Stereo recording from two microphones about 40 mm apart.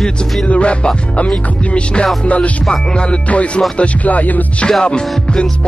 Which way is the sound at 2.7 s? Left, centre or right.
Left.